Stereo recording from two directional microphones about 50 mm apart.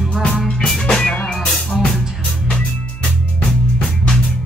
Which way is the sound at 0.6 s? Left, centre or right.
Centre.